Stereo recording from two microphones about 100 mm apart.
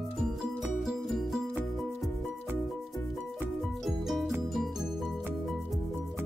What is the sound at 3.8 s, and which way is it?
Music, centre (ahead or behind).